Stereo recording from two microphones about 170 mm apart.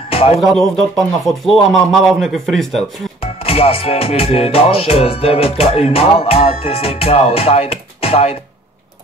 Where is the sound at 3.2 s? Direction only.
35° left (ahead or behind).